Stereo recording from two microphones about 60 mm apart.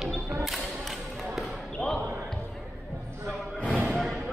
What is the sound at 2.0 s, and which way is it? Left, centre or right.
Basketball bounce, right.